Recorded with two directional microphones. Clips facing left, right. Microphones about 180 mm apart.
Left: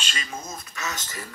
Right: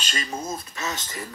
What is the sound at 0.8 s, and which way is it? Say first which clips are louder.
Speech: even; 30° right (ahead or behind).